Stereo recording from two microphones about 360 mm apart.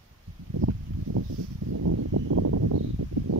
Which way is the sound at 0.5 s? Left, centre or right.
Right.